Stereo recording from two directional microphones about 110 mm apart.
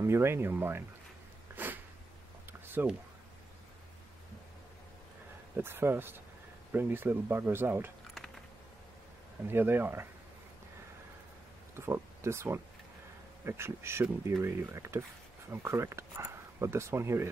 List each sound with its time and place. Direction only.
0.0 s speech: 25° right (ahead or behind)
1.5 s a sound: 20° right (ahead or behind)
5.6 s speech: 20° right (ahead or behind)
9.5 s speech: 20° right (ahead or behind)
11.7 s speech: 25° right (ahead or behind)